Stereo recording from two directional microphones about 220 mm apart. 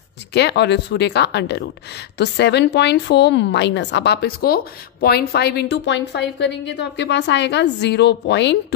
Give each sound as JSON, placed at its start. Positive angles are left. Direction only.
{"t": 0.3, "sound": "a woman's voice", "side_deg": 50}